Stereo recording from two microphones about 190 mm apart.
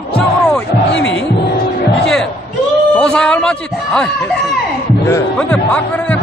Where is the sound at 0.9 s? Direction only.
75° left (ahead or behind).